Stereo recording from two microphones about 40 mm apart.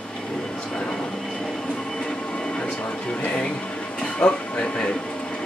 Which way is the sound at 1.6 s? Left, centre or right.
Centre.